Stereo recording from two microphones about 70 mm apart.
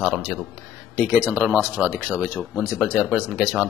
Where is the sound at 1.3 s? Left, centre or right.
Right.